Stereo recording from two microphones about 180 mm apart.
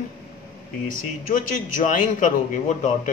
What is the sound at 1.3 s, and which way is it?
A man's voice, 50° left (ahead or behind).